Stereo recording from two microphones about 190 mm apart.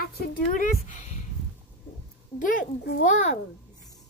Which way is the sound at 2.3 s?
45° left (ahead or behind).